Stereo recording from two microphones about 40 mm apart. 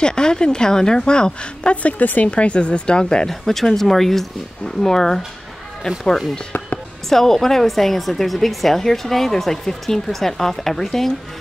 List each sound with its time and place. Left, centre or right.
0.0 s a woman's voice: left
1.8 s speech: left
2.3 s a woman's voice: left
3.3 s a woman's voice: centre
7.1 s a woman's voice: centre